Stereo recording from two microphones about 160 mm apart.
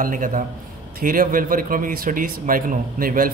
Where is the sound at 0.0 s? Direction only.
55° right (ahead or behind).